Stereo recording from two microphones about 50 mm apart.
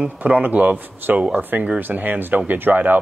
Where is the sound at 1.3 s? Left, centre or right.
Right.